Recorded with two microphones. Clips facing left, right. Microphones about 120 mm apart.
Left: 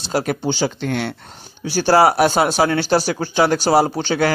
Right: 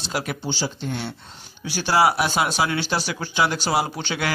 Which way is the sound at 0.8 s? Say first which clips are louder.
Left 7 dB; 75° left (ahead or behind).